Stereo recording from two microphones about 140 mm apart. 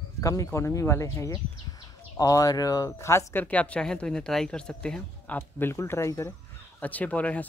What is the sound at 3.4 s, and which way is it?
Speech, 10° left (ahead or behind).